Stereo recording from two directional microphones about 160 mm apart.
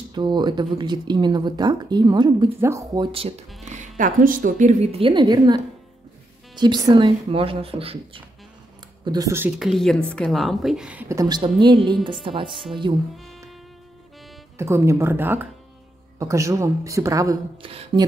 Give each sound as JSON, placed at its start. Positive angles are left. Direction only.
{"t": 0.1, "sound": "speech", "side_deg": -25}
{"t": 3.1, "sound": "speech", "side_deg": -35}
{"t": 3.6, "sound": "speech", "side_deg": -50}
{"t": 9.0, "sound": "speech", "side_deg": -25}
{"t": 9.6, "sound": "a woman's voice", "side_deg": 0}
{"t": 11.1, "sound": "speech", "side_deg": -25}
{"t": 13.1, "sound": "speech", "side_deg": 0}
{"t": 14.6, "sound": "speech", "side_deg": -15}
{"t": 17.6, "sound": "speech", "side_deg": -35}